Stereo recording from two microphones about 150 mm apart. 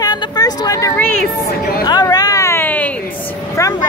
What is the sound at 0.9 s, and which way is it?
Speech, 10° left (ahead or behind).